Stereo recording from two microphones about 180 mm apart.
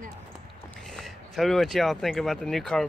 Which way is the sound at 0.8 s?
5° left (ahead or behind).